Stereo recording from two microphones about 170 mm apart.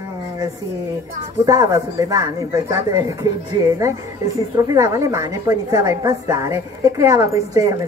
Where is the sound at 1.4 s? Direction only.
20° right (ahead or behind).